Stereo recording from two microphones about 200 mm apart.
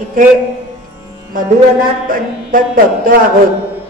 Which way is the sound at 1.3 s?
45° right (ahead or behind).